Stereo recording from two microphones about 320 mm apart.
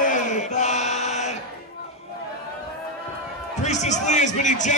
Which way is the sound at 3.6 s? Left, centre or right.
Left.